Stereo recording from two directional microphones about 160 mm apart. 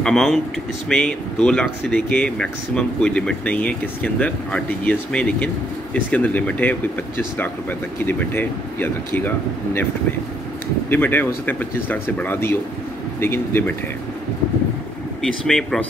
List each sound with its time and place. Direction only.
0.0 s speech: 5° left (ahead or behind)
8.0 s speech: 10° left (ahead or behind)
10.9 s speech: 10° left (ahead or behind)
15.2 s speech: 5° left (ahead or behind)